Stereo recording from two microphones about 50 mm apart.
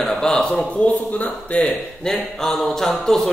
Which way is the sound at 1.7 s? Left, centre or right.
Centre.